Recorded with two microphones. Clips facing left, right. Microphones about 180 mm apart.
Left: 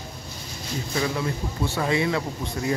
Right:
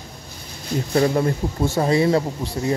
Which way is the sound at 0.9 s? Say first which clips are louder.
Right 8 dB; 45° right (ahead or behind).